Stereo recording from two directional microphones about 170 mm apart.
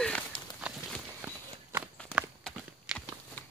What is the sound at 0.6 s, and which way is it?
Clip-clop, 10° right (ahead or behind).